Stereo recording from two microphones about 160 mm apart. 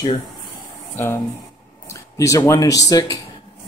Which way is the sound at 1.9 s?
20° left (ahead or behind).